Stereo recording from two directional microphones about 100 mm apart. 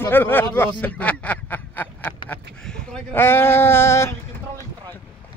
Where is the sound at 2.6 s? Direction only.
10° left (ahead or behind).